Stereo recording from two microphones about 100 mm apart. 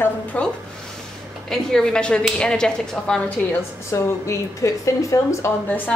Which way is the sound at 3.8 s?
30° left (ahead or behind).